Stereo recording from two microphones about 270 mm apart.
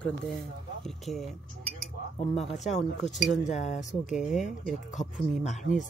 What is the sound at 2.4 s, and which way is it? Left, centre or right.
Speech, centre.